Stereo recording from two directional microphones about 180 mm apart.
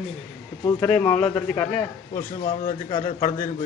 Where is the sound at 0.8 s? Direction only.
5° left (ahead or behind).